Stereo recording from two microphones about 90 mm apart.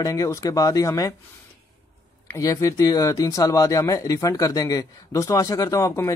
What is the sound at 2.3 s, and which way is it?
Speech, 35° left (ahead or behind).